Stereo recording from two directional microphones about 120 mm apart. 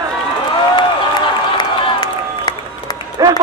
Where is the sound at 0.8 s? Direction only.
40° left (ahead or behind).